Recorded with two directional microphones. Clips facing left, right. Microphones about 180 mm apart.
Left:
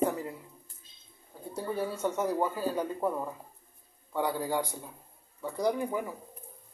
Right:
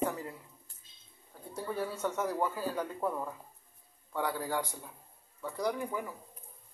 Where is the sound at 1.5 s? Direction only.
15° left (ahead or behind).